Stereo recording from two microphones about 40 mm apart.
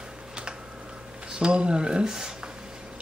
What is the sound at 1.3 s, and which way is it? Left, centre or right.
Speech, right.